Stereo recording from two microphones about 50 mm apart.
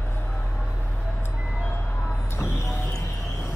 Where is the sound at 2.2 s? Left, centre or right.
Left.